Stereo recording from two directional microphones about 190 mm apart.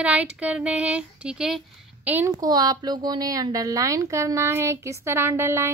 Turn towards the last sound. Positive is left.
turn(degrees=-10)  # may be behind; listen again after turning